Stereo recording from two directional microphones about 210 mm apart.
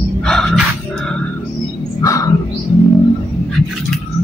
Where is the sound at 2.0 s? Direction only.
15° left (ahead or behind).